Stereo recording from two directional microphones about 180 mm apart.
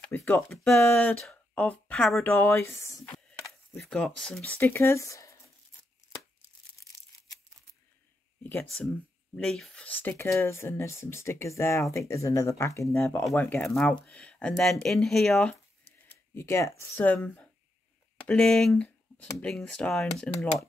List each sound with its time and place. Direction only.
0.1 s speech: 10° left (ahead or behind)
2.2 s speech: 15° left (ahead or behind)
9.3 s speech: 5° left (ahead or behind)
16.1 s speech: 15° left (ahead or behind)